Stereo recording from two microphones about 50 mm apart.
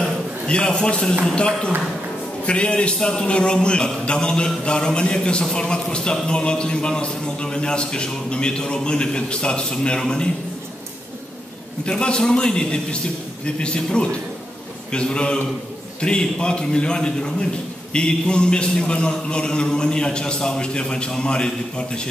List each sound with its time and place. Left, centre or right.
0.5 s a man's voice: centre
11.8 s a man's voice: centre